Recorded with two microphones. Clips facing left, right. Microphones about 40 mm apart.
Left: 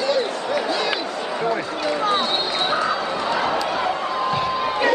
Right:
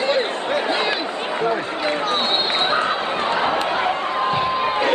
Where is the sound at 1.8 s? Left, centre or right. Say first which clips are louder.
Left 1 dB; right.